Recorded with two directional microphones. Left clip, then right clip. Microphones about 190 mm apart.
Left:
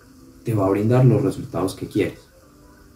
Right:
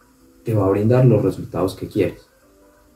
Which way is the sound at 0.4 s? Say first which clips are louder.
Right 2 dB; centre (ahead or behind).